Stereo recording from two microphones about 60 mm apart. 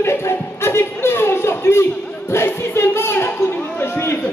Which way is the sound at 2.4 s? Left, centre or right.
Left.